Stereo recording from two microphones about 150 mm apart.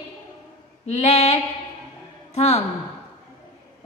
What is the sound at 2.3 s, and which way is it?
Speech, 45° left (ahead or behind).